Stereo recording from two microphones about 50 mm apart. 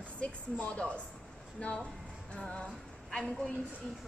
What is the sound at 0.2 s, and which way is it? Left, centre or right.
A woman's voice, left.